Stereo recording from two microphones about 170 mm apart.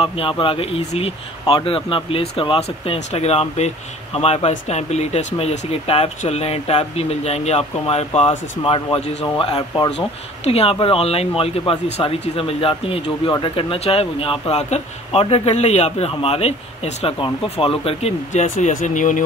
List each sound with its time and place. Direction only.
0.0 s speech: 30° left (ahead or behind)
9.9 s speech: 35° left (ahead or behind)